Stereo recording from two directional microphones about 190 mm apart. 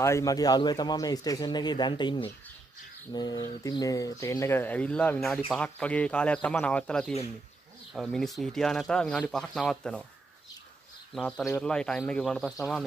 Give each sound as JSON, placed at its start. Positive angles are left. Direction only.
{"t": 0.0, "sound": "speech", "side_deg": 15}
{"t": 11.1, "sound": "speech", "side_deg": 5}